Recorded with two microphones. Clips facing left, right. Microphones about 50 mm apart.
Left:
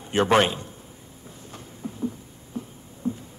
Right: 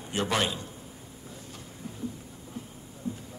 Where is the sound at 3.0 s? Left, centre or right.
Left.